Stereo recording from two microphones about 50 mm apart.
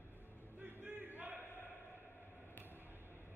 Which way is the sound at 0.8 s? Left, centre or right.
Right.